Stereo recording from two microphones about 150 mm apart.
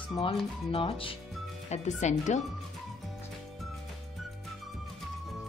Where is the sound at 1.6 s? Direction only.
50° left (ahead or behind).